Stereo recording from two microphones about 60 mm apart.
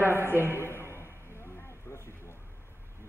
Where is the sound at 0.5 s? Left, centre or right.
Left.